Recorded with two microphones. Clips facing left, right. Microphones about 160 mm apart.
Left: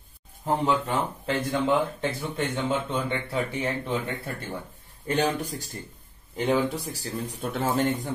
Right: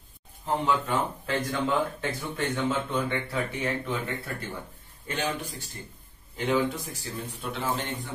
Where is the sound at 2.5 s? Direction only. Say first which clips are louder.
Right 1 dB; 25° left (ahead or behind).